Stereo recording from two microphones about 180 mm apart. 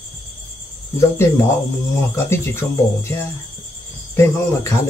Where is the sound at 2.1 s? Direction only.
15° left (ahead or behind).